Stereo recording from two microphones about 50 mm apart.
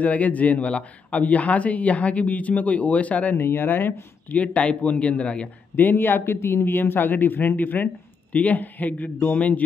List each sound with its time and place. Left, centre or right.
0.0 s speech: left
3.3 s speech: left
4.3 s speech: left
5.8 s speech: left